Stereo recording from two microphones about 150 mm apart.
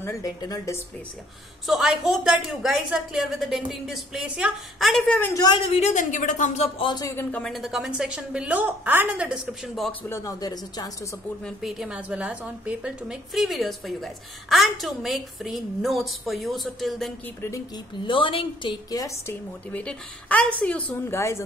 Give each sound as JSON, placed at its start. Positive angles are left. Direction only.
{"t": 0.0, "sound": "speech", "side_deg": 20}
{"t": 1.7, "sound": "a woman's voice", "side_deg": 0}
{"t": 5.3, "sound": "speech", "side_deg": 25}
{"t": 5.7, "sound": "speech", "side_deg": 50}
{"t": 6.8, "sound": "speech", "side_deg": 25}
{"t": 7.2, "sound": "a woman's voice", "side_deg": 10}
{"t": 7.5, "sound": "a woman's voice", "side_deg": 0}
{"t": 10.0, "sound": "speech", "side_deg": 20}
{"t": 11.4, "sound": "a woman's voice", "side_deg": 0}
{"t": 18.0, "sound": "a woman's voice", "side_deg": 35}